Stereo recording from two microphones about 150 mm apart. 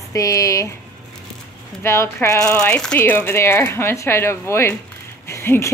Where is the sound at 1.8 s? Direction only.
15° left (ahead or behind).